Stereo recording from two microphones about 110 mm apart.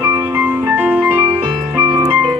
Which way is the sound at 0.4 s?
15° right (ahead or behind).